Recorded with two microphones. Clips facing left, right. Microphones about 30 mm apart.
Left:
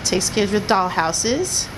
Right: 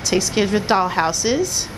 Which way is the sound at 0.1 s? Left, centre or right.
Centre.